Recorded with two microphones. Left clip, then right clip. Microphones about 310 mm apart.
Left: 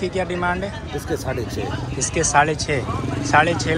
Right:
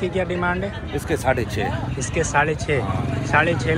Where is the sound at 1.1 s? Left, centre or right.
Right.